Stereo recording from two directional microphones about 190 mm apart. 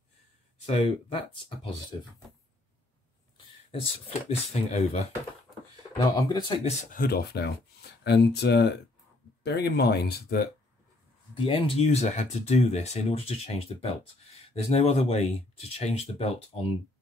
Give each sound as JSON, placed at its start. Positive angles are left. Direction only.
{"t": 0.7, "sound": "speech", "side_deg": 30}
{"t": 4.3, "sound": "speech", "side_deg": 35}
{"t": 5.9, "sound": "speech", "side_deg": 20}
{"t": 6.6, "sound": "speech", "side_deg": 40}
{"t": 8.0, "sound": "speech", "side_deg": 60}
{"t": 11.3, "sound": "speech", "side_deg": 30}